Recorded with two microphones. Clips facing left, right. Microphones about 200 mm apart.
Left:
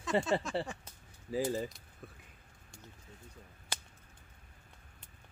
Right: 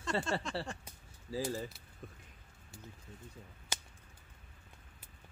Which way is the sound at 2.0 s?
5° left (ahead or behind).